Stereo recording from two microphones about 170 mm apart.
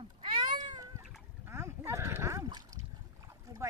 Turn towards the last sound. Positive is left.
turn(degrees=-15)  # may be behind; listen again after turning